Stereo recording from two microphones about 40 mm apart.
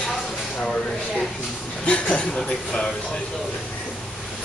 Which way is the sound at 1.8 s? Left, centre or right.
Left.